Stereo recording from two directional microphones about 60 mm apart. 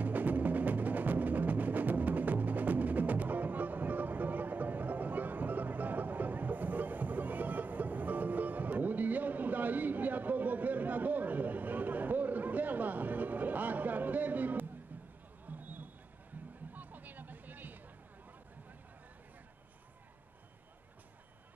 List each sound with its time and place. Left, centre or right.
0.0 s music: right
15.4 s a sound: right
16.7 s music: right